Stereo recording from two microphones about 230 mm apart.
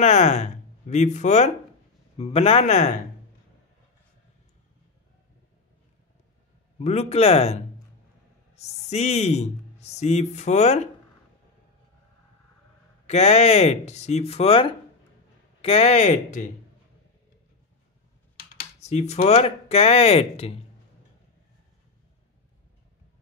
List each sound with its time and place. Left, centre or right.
0.0 s speech: left
6.8 s speech: left
13.0 s speech: left
18.3 s speech: left